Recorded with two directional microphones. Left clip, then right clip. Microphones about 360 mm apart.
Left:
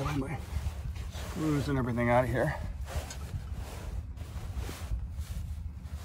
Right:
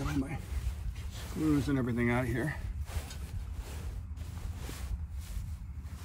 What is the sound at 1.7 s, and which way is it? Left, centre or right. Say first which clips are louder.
Speech: left 3 dB; centre.